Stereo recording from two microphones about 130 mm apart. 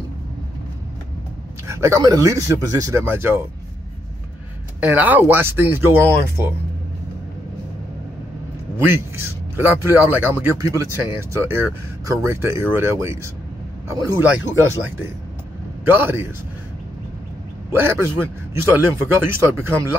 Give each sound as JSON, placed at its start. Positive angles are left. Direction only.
{"t": 1.7, "sound": "a man's voice", "side_deg": -20}
{"t": 4.7, "sound": "a man's voice", "side_deg": -10}
{"t": 8.7, "sound": "a man's voice", "side_deg": -15}
{"t": 14.3, "sound": "a man's voice", "side_deg": -20}
{"t": 15.9, "sound": "a man's voice", "side_deg": -15}
{"t": 17.6, "sound": "a man's voice", "side_deg": -20}